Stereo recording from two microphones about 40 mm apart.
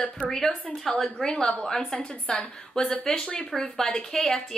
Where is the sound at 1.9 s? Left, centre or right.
Left.